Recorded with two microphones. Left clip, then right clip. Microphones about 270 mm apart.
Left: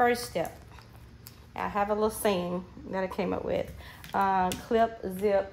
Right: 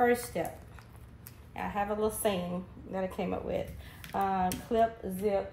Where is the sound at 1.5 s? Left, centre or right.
Left.